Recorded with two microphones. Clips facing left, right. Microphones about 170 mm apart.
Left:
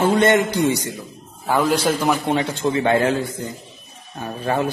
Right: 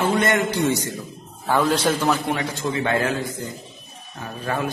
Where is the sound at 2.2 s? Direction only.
25° left (ahead or behind).